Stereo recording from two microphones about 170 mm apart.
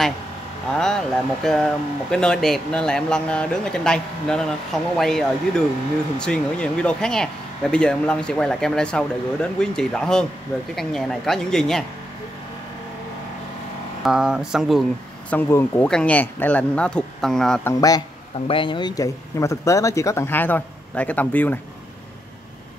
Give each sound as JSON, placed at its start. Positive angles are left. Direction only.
{"t": 0.7, "sound": "speech", "side_deg": 5}
{"t": 14.0, "sound": "speech", "side_deg": -5}
{"t": 17.6, "sound": "speech", "side_deg": 20}